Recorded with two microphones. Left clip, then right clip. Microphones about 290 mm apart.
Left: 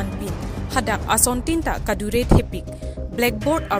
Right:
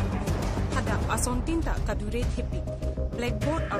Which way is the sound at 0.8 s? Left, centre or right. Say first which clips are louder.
Left 11 dB; centre.